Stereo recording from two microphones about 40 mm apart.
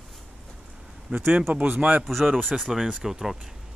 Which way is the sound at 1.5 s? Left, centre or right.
Right.